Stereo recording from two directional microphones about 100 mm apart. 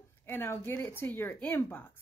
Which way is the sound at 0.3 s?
20° left (ahead or behind).